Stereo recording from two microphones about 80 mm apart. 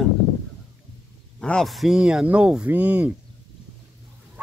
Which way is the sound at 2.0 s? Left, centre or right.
Centre.